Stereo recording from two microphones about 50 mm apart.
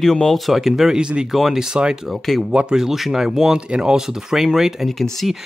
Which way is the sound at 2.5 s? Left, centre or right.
Centre.